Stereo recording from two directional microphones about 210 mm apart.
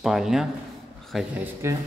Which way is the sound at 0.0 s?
Centre (ahead or behind).